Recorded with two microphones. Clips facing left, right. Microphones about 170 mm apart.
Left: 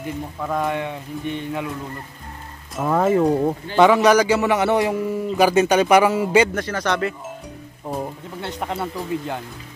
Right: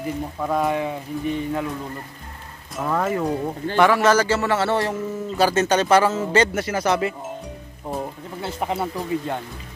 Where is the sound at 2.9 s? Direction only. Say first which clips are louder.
Left 6 dB; 20° left (ahead or behind).